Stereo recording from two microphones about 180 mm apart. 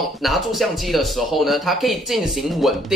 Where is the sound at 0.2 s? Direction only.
Centre (ahead or behind).